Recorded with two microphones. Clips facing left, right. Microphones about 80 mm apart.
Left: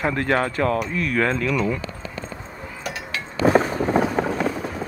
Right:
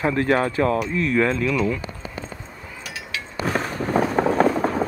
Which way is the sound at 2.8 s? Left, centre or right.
Left.